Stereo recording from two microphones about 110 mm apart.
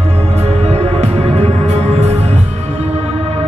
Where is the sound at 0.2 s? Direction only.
75° right (ahead or behind).